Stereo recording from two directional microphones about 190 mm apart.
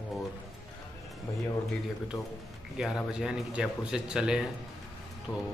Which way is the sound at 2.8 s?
5° right (ahead or behind).